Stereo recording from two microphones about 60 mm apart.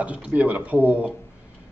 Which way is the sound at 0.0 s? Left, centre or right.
Right.